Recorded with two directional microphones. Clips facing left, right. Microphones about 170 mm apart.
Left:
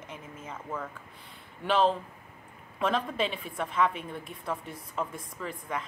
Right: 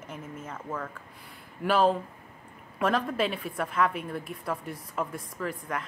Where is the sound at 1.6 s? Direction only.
10° right (ahead or behind).